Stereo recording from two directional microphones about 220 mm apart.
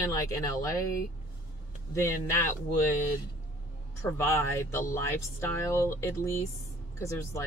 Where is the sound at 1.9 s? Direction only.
15° left (ahead or behind).